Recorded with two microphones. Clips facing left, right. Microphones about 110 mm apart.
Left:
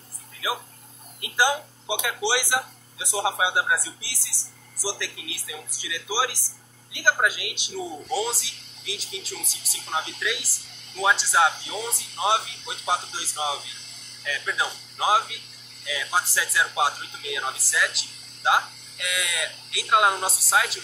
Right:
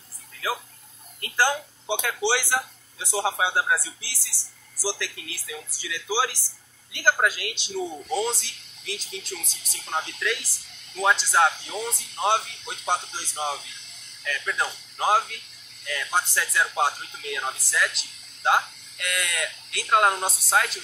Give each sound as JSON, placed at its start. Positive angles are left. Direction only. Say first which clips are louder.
{"t": 0.4, "sound": "a woman's voice", "louder": "even", "side_deg": 15}